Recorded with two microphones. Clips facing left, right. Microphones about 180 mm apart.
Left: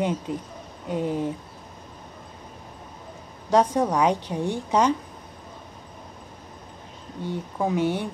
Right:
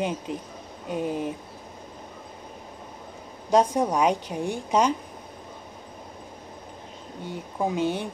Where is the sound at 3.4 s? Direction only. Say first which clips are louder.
Left 1 dB; 15° right (ahead or behind).